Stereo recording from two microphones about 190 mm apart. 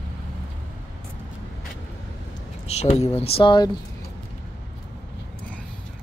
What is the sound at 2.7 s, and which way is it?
Speech, 35° left (ahead or behind).